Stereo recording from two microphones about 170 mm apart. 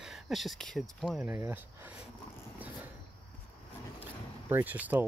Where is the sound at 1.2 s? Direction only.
10° right (ahead or behind).